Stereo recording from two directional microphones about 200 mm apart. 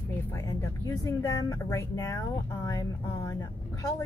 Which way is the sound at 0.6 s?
15° left (ahead or behind).